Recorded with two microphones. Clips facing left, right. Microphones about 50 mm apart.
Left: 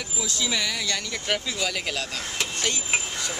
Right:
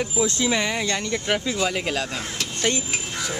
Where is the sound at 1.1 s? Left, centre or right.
Centre.